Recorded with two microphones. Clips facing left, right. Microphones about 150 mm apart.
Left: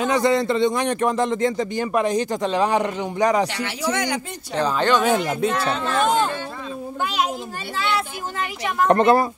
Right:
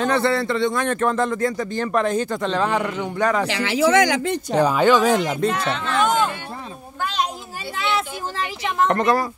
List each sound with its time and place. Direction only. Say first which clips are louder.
0.0 s a man's voice: left 1 dB; 15° left (ahead or behind)
3.4 s speech: right 6 dB; 90° right
4.6 s speech: right 3 dB; 10° right (ahead or behind)
5.7 s speech: even; 40° left (ahead or behind)
7.0 s a man's voice: even; 10° left (ahead or behind)
7.7 s speech: right 1 dB; 25° right (ahead or behind)
8.8 s a woman's voice: left 4 dB; 30° left (ahead or behind)